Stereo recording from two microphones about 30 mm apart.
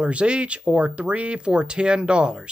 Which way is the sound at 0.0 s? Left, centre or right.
Right.